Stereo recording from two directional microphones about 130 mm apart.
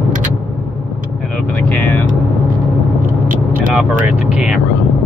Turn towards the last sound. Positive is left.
turn(degrees=-10)  # may be behind; listen again after turning